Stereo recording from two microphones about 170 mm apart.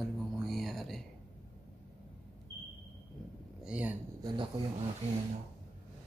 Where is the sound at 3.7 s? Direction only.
5° right (ahead or behind).